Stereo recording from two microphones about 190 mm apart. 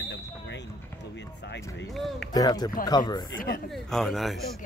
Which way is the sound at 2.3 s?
20° left (ahead or behind).